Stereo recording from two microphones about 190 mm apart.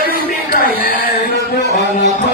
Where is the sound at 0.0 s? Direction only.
50° left (ahead or behind).